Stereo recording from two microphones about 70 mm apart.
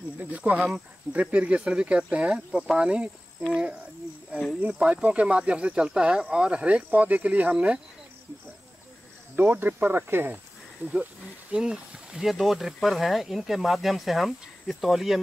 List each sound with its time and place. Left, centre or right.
0.2 s speech: right
4.6 s speech: centre
9.3 s speech: right
11.5 s speech: centre